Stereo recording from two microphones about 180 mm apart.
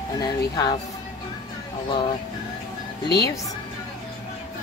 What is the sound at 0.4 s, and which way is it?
Speech, 25° left (ahead or behind).